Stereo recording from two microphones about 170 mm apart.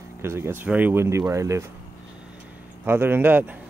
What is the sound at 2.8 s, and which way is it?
Speech, 15° right (ahead or behind).